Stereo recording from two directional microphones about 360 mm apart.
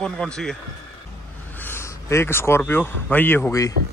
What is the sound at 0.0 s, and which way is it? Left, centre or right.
Speech, centre.